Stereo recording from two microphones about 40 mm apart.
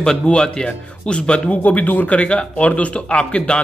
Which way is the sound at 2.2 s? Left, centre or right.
Left.